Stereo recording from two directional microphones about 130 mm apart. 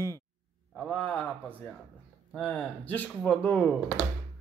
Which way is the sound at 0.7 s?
5° left (ahead or behind).